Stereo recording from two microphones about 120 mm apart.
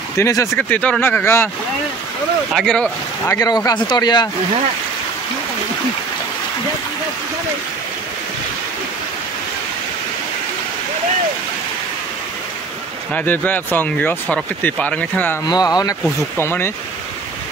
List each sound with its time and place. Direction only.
0.2 s speech: 25° left (ahead or behind)
0.6 s speech: 10° left (ahead or behind)
2.5 s speech: 5° left (ahead or behind)
3.3 s speech: 30° left (ahead or behind)
13.1 s speech: 15° left (ahead or behind)
15.5 s speech: 30° left (ahead or behind)